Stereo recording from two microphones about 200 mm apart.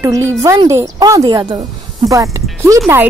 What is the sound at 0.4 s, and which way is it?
Speech, 15° right (ahead or behind).